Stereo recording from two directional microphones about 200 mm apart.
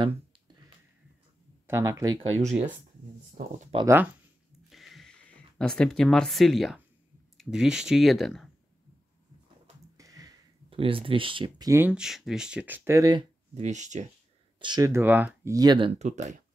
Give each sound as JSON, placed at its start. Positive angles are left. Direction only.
{"t": 1.7, "sound": "speech", "side_deg": -15}
{"t": 2.3, "sound": "speech", "side_deg": -35}
{"t": 3.4, "sound": "speech", "side_deg": -50}
{"t": 3.7, "sound": "speech", "side_deg": -15}
{"t": 4.6, "sound": "a sound", "side_deg": 0}
{"t": 7.3, "sound": "speech", "side_deg": -5}
{"t": 9.9, "sound": "speech", "side_deg": -15}
{"t": 13.6, "sound": "speech", "side_deg": -35}
{"t": 14.6, "sound": "speech", "side_deg": -20}
{"t": 16.0, "sound": "speech", "side_deg": -35}